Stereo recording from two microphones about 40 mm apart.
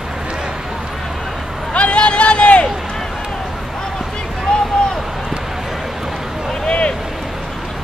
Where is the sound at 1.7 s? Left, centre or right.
Left.